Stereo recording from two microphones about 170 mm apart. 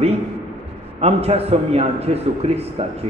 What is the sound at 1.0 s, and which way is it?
A man's voice, 35° right (ahead or behind).